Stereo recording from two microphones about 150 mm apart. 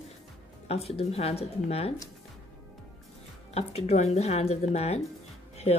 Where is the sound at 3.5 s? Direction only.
45° left (ahead or behind).